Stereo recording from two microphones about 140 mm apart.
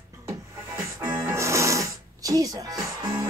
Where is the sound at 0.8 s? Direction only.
20° right (ahead or behind).